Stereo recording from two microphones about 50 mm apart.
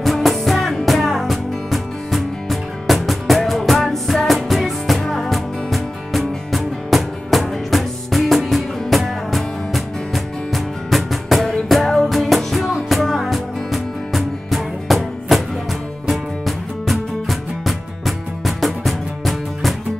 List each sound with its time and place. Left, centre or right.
0.0 s music: centre